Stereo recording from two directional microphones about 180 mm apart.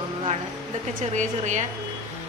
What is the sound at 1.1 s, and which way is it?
Speech, 40° right (ahead or behind).